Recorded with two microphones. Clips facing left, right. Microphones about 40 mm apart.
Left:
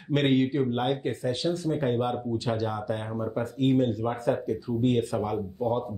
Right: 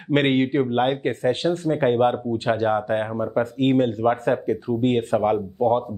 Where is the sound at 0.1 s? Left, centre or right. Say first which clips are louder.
Right 4 dB; right.